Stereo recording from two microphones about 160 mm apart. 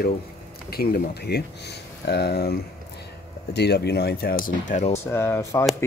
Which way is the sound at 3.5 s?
90° left.